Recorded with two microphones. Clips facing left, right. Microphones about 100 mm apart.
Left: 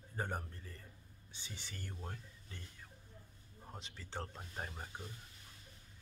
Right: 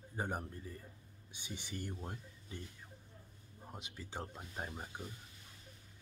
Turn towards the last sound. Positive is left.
turn(degrees=-10)  # may be behind; listen again after turning